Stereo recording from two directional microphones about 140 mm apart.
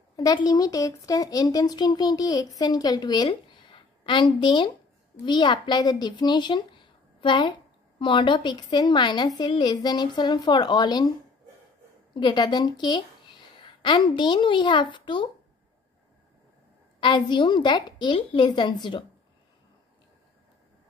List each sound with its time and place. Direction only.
0.1 s a woman's voice: 30° left (ahead or behind)
17.0 s a woman's voice: 35° left (ahead or behind)